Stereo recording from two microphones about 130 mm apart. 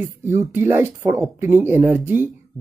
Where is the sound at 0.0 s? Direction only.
20° right (ahead or behind).